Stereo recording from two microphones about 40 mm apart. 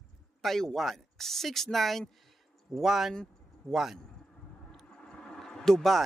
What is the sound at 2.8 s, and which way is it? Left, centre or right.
Speech, centre.